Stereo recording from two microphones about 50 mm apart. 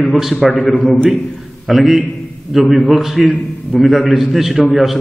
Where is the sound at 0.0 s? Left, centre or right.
Centre.